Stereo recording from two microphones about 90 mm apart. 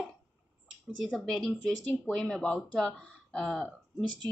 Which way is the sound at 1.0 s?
5° left (ahead or behind).